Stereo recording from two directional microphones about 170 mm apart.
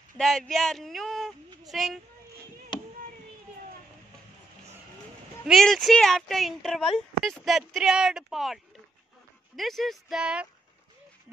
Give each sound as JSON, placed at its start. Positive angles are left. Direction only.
{"t": 0.2, "sound": "a child's voice", "side_deg": 0}
{"t": 5.5, "sound": "speech", "side_deg": 0}
{"t": 9.6, "sound": "speech", "side_deg": 0}